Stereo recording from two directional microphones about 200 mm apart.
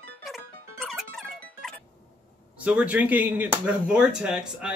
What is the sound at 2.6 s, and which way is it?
Speech, 5° right (ahead or behind).